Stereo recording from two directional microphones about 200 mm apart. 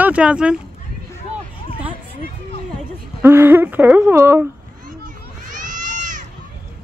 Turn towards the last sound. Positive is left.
turn(degrees=-40)  # may be behind; listen again after turning